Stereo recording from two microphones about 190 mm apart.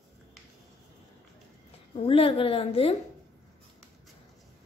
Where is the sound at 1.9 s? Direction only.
30° left (ahead or behind).